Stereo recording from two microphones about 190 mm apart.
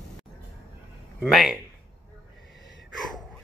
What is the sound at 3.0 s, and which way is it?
Gasp, centre (ahead or behind).